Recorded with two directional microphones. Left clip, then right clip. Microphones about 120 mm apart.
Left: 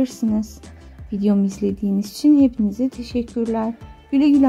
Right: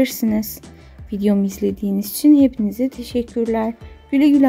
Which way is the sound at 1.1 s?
30° right (ahead or behind).